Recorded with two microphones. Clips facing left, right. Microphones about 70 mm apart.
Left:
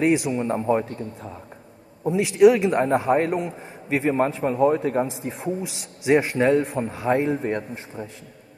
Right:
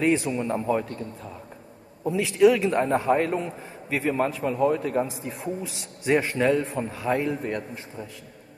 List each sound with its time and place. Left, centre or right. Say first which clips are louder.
0.0 s a man's voice: left 2 dB; centre
6.0 s a man's voice: left 3 dB; centre